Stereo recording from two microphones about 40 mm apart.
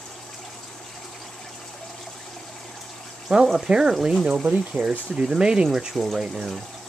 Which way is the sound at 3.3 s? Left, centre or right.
Centre.